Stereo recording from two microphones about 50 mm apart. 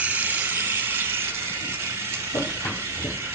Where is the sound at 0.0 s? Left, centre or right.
Right.